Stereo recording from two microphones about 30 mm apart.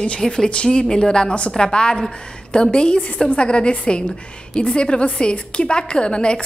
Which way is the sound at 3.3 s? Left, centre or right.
Left.